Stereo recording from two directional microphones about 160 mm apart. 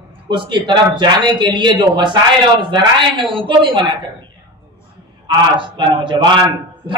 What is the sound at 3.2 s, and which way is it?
Speech, 30° right (ahead or behind).